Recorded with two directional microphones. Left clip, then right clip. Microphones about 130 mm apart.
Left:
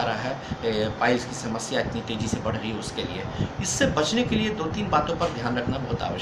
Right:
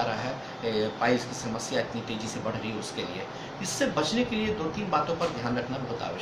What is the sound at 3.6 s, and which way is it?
Speech, 10° left (ahead or behind).